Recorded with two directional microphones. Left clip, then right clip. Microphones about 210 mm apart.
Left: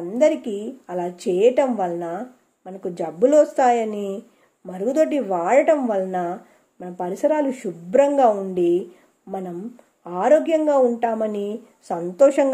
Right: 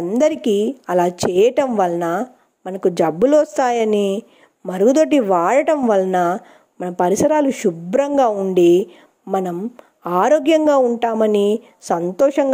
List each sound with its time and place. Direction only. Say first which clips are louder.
0.1 s speech: right 2 dB; 40° right (ahead or behind)